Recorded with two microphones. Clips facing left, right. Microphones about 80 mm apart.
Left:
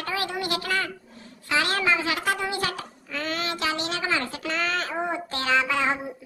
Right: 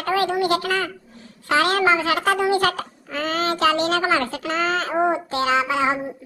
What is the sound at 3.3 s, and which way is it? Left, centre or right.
A child's voice, right.